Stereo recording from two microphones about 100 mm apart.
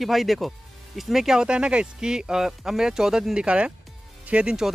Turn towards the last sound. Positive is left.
turn(degrees=-10)  # may be behind; listen again after turning